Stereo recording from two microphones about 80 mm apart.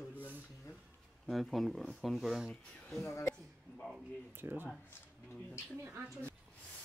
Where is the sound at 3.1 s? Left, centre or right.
Left.